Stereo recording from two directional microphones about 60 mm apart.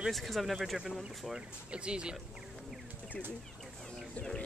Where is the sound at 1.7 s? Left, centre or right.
Centre.